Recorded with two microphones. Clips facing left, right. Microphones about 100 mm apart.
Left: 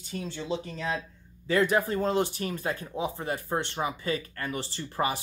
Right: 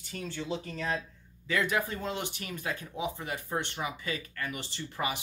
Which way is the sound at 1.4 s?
35° left (ahead or behind).